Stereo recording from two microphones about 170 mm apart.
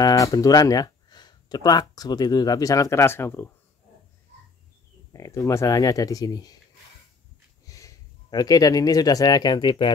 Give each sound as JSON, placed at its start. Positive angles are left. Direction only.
{"t": 0.0, "sound": "speech", "side_deg": 20}
{"t": 5.1, "sound": "speech", "side_deg": 20}
{"t": 7.6, "sound": "speech", "side_deg": 20}